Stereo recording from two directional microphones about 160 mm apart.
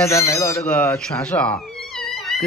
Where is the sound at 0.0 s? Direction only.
20° left (ahead or behind).